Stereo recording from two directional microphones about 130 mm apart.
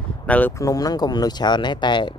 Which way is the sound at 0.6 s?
25° left (ahead or behind).